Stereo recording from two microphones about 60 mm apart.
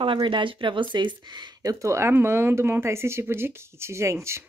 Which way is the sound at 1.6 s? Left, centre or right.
Right.